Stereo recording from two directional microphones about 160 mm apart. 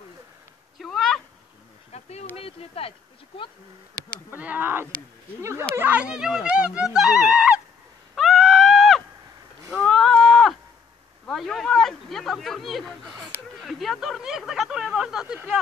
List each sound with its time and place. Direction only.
0.7 s cat: centre (ahead or behind)
1.9 s insect: 40° left (ahead or behind)
2.3 s speech: 40° left (ahead or behind)
4.3 s speech: 10° right (ahead or behind)
8.2 s screaming: centre (ahead or behind)
9.8 s a sound: centre (ahead or behind)
11.2 s speech: centre (ahead or behind)